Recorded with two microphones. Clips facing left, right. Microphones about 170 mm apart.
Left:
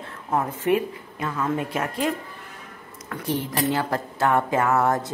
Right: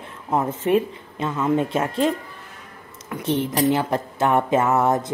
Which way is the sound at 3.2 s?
25° right (ahead or behind).